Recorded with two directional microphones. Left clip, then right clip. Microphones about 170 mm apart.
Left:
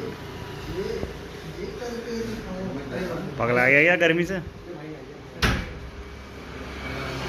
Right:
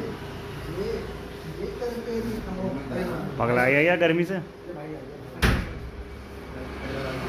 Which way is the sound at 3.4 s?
Centre (ahead or behind).